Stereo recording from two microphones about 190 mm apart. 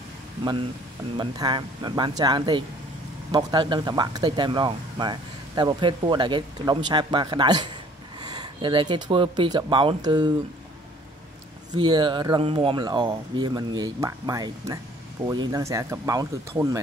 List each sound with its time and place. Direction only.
1.1 s speech: 20° right (ahead or behind)
8.2 s a sound: 20° right (ahead or behind)
9.1 s speech: 25° right (ahead or behind)
11.7 s speech: 25° right (ahead or behind)